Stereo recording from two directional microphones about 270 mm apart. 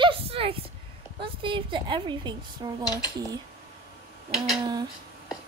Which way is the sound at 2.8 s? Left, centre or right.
Centre.